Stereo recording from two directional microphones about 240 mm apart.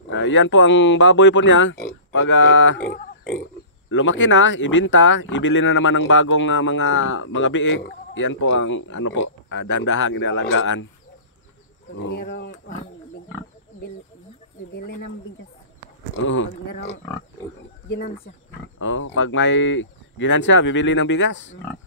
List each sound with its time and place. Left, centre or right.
0.1 s speech: left
3.9 s speech: left
12.2 s speech: left
16.2 s speech: left
18.8 s speech: left